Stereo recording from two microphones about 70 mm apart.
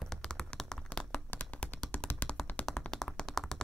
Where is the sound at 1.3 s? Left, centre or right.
Left.